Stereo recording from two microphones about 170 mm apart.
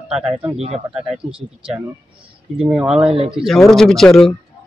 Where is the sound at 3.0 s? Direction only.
35° right (ahead or behind).